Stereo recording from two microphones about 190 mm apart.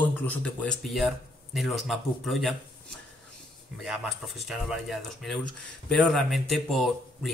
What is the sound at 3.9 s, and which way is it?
Speech, centre (ahead or behind).